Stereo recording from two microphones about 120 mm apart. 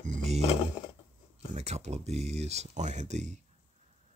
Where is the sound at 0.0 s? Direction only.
80° right.